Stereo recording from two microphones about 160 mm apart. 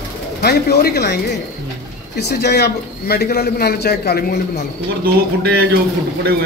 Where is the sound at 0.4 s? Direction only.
85° left.